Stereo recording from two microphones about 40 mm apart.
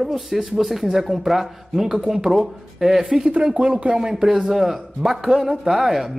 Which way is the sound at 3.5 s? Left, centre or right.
Right.